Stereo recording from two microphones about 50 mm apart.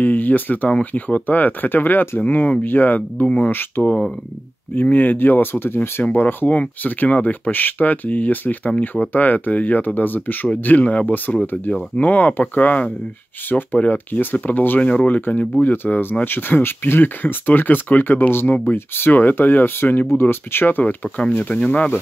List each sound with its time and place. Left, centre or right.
0.0 s speech: left
3.3 s speech: left
3.8 s speech: left
6.0 s speech: left
21.5 s speech: left